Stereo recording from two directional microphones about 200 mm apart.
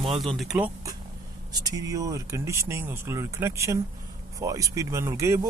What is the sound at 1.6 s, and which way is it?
Speech, 15° right (ahead or behind).